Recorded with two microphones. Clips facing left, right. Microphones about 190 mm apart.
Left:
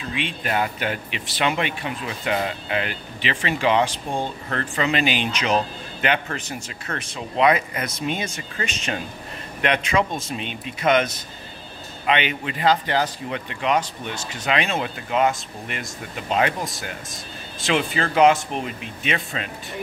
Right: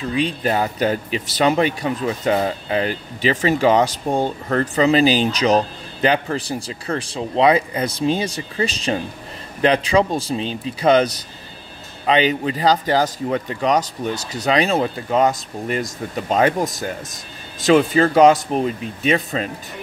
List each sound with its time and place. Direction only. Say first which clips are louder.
0.1 s speech: right 6 dB; 40° right (ahead or behind)